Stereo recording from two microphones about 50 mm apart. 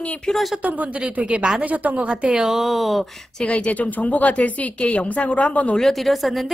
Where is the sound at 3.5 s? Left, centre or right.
Left.